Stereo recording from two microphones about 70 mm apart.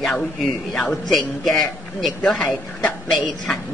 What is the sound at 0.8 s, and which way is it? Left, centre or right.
A man's voice, centre.